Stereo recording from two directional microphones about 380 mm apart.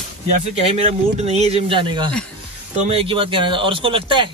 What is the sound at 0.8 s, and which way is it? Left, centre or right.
Speech, centre.